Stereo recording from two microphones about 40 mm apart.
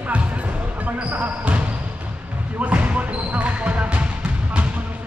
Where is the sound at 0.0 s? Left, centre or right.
Right.